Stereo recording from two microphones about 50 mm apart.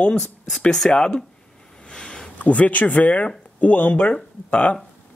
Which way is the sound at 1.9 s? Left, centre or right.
Centre.